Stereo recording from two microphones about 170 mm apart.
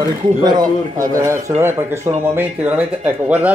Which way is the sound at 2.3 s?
10° right (ahead or behind).